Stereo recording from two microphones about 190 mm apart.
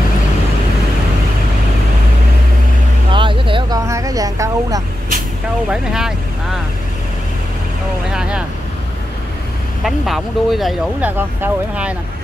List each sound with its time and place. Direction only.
3.1 s vehicle: 25° right (ahead or behind)
3.8 s vehicle: 15° right (ahead or behind)
5.7 s speech: 5° right (ahead or behind)
8.1 s vehicle: 5° right (ahead or behind)
9.8 s speech: centre (ahead or behind)